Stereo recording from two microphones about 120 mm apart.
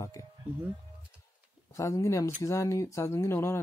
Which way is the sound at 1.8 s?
25° left (ahead or behind).